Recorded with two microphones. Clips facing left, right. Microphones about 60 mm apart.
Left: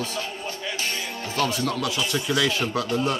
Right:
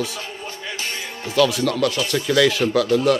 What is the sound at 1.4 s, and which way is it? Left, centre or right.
Speech, right.